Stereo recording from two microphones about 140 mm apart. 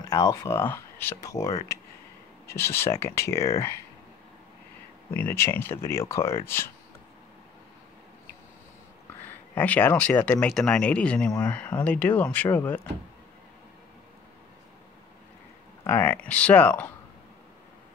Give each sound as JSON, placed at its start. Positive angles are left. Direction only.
{"t": 0.0, "sound": "speech", "side_deg": 25}
{"t": 5.1, "sound": "speech", "side_deg": 15}
{"t": 9.6, "sound": "speech", "side_deg": 10}
{"t": 15.8, "sound": "speech", "side_deg": 15}